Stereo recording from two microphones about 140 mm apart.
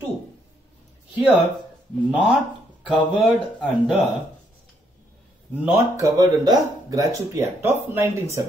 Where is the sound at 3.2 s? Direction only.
Centre (ahead or behind).